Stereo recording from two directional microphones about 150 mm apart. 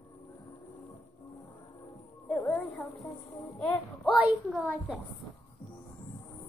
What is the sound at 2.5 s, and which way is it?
A woman's voice, 10° left (ahead or behind).